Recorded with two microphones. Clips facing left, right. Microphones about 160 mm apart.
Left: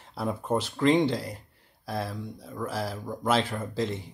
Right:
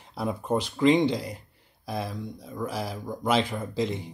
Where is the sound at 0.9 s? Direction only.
5° left (ahead or behind).